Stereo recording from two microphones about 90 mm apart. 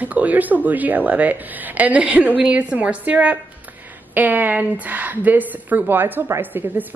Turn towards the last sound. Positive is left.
turn(degrees=-20)  # may be behind; listen again after turning